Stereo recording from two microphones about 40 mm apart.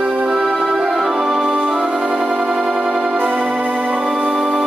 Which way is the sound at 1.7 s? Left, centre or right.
Centre.